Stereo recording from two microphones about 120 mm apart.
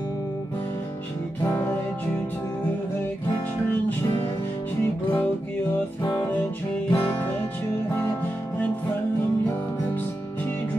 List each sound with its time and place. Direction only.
6.9 s music: 15° left (ahead or behind)